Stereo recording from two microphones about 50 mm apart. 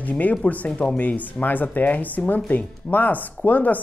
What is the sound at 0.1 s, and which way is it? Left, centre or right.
Speech, left.